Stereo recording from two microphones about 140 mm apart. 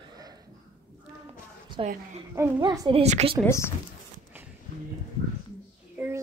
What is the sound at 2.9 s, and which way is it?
Speech, 50° right (ahead or behind).